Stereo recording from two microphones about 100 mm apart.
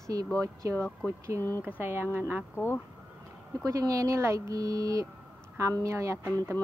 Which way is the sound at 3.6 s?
35° right (ahead or behind).